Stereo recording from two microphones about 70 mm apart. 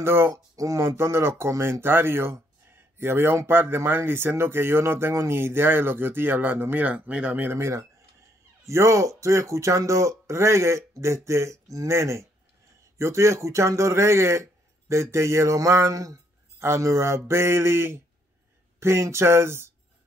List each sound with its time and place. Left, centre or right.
0.0 s speech: right
2.7 s a sound: right
3.4 s speech: right
7.5 s speech: right
16.5 s speech: right